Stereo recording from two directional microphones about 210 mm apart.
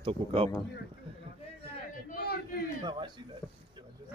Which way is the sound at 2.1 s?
45° left (ahead or behind).